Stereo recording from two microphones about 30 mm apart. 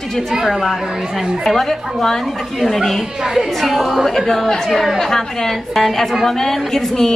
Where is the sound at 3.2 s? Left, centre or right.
Centre.